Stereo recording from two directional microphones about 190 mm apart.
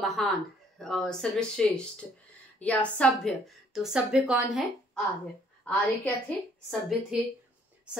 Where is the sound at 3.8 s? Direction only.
5° right (ahead or behind).